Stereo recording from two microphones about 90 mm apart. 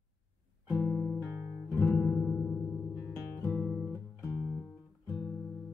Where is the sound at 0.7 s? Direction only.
25° left (ahead or behind).